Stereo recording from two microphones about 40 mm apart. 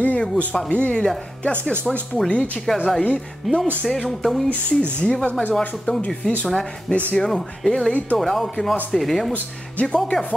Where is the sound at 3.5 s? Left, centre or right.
Centre.